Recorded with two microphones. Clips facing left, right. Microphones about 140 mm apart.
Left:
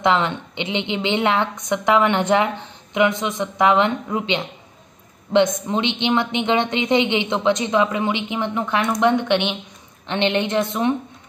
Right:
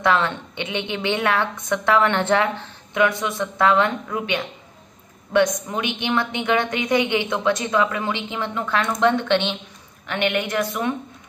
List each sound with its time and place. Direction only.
0.0 s a woman's voice: 20° left (ahead or behind)